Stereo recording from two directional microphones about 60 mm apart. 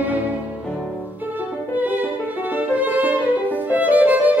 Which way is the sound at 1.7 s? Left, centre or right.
Right.